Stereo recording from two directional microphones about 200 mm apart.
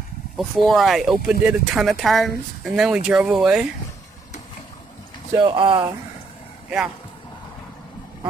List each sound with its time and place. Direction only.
0.4 s speech: centre (ahead or behind)
5.4 s speech: 25° right (ahead or behind)